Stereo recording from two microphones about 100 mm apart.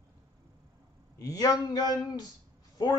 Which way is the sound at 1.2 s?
40° left (ahead or behind).